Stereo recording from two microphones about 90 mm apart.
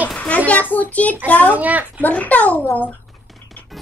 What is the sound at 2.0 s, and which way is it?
Speech, 15° left (ahead or behind).